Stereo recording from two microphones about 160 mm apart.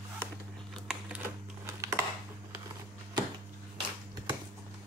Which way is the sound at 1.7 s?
20° right (ahead or behind).